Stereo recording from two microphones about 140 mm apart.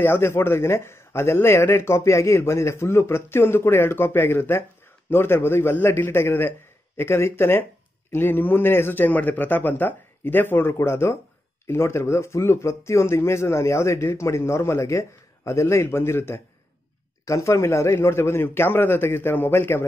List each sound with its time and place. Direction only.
0.0 s speech: 15° left (ahead or behind)